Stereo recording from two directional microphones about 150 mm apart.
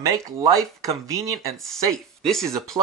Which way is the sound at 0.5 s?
20° right (ahead or behind).